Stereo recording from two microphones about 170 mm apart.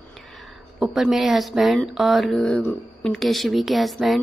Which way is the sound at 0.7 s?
Centre (ahead or behind).